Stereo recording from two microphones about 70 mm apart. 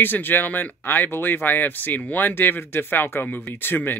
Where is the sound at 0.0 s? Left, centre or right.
Left.